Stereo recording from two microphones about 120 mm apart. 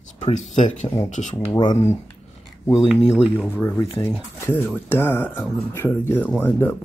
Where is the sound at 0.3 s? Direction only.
90° left.